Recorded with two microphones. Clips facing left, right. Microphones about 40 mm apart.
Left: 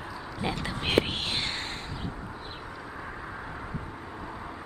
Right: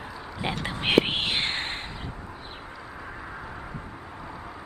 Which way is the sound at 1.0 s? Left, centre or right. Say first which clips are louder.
Right 4 dB; right.